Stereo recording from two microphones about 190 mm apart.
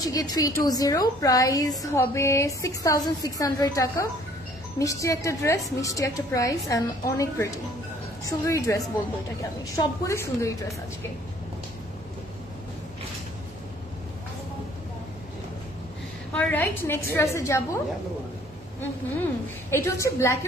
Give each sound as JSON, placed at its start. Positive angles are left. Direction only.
{"t": 0.0, "sound": "a woman's voice", "side_deg": 20}
{"t": 16.3, "sound": "a woman's voice", "side_deg": 10}
{"t": 19.7, "sound": "a woman's voice", "side_deg": 15}